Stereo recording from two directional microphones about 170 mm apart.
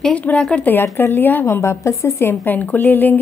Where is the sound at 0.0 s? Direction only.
10° left (ahead or behind).